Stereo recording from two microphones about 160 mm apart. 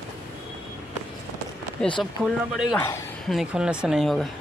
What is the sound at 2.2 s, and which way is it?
Speech, 5° left (ahead or behind).